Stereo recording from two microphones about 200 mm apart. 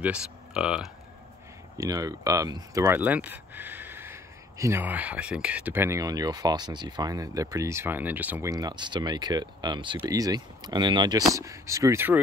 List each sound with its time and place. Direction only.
0.0 s speech: 5° right (ahead or behind)
1.8 s speech: 15° right (ahead or behind)